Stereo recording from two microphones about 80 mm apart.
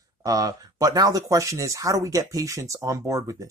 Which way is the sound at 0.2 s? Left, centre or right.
Right.